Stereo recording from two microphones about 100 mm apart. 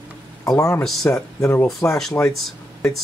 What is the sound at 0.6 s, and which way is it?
Speech, 30° left (ahead or behind).